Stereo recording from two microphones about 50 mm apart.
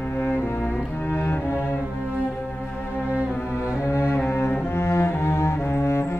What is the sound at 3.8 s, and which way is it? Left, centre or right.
Cello, left.